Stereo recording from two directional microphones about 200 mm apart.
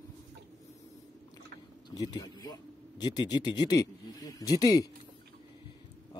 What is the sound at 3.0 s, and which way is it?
Speech, 20° left (ahead or behind).